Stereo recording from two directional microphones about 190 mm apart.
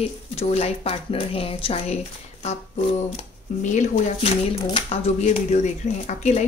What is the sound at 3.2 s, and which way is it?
Speech, 40° left (ahead or behind).